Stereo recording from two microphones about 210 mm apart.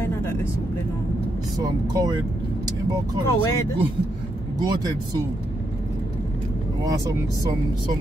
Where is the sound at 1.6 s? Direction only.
15° right (ahead or behind).